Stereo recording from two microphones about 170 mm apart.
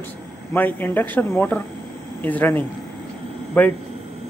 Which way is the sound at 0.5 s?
10° left (ahead or behind).